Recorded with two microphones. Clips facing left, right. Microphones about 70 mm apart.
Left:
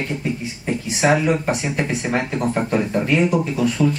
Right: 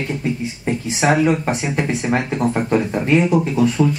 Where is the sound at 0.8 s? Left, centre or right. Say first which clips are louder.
Right 1 dB; right.